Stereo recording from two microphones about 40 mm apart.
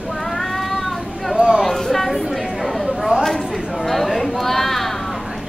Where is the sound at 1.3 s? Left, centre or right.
Right.